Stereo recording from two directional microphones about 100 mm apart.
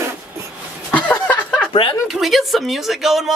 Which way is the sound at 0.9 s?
15° left (ahead or behind).